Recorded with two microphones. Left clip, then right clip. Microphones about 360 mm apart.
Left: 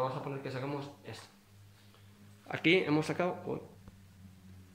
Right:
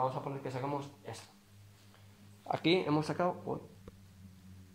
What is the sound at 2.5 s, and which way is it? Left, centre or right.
Speech, centre.